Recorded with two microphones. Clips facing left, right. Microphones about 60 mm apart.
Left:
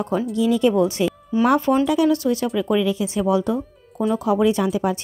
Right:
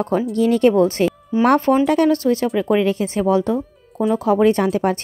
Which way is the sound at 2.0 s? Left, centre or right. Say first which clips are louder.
Right 2 dB; right.